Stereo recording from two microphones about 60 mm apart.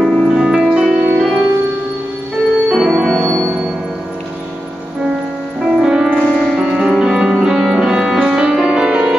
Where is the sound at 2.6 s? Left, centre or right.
Centre.